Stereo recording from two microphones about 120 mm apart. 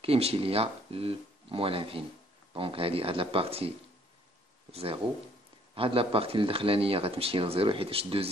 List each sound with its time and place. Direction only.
0.0 s speech: 55° right (ahead or behind)
5.8 s speech: 50° right (ahead or behind)